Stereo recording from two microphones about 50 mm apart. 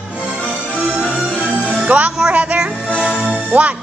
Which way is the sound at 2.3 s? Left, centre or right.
Right.